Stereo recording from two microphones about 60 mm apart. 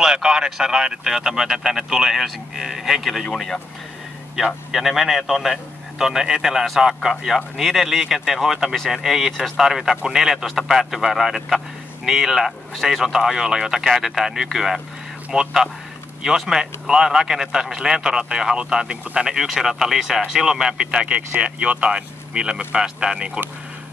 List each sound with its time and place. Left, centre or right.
0.0 s a man's voice: centre
4.4 s a man's voice: centre